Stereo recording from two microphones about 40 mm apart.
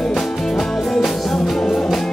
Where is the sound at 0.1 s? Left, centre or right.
Centre.